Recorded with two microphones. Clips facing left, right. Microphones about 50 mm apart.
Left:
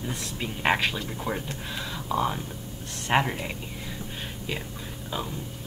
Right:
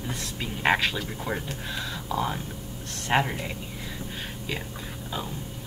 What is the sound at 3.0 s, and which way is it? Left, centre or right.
Speech, centre.